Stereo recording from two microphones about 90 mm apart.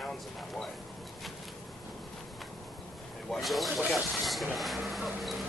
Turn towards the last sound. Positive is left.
turn(degrees=0)  # may be behind; listen again after turning